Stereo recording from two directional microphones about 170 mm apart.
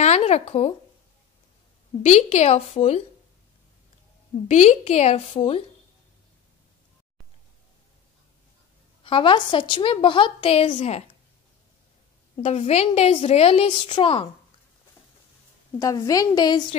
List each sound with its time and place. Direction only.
0.0 s a sound: 40° left (ahead or behind)
2.0 s a woman's voice: 40° left (ahead or behind)
4.5 s a woman's voice: 45° left (ahead or behind)
9.0 s a woman's voice: 30° left (ahead or behind)
12.4 s a woman's voice: 40° left (ahead or behind)
15.8 s a woman's voice: 20° left (ahead or behind)